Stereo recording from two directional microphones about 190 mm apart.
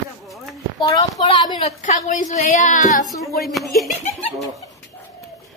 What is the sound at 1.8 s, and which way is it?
A woman's voice, 45° left (ahead or behind).